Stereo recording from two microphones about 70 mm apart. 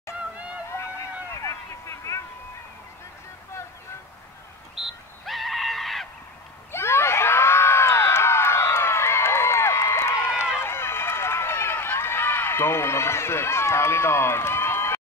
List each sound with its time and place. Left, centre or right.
0.7 s a sound: left
4.7 s frog: centre
6.7 s crowd: left